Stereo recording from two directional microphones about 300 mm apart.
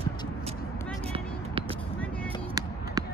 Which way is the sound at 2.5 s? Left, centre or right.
Centre.